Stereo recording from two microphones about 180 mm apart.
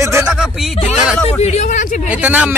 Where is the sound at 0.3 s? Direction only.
Centre (ahead or behind).